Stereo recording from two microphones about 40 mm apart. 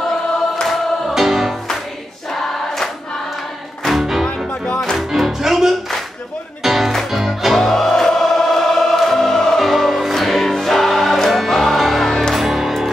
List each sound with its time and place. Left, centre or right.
1.1 s music: centre
3.8 s music: centre
4.5 s music: left
4.9 s music: centre
9.6 s music: centre
12.4 s music: centre